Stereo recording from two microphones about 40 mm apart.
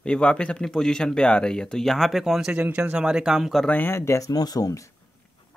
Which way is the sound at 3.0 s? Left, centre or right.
Centre.